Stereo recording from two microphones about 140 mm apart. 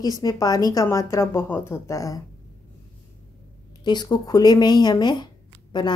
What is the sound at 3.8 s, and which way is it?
A woman's voice, 30° left (ahead or behind).